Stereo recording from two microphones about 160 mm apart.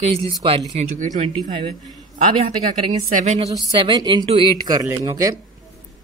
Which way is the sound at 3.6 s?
25° right (ahead or behind).